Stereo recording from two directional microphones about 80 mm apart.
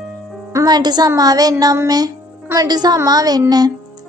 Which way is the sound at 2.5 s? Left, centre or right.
Right.